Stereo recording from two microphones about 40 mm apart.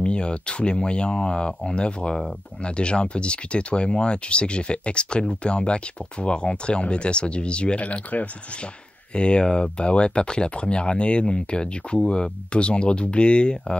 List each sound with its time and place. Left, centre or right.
0.0 s speech: left
9.1 s speech: left